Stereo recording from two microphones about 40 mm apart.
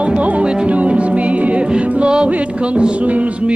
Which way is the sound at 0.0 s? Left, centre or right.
Right.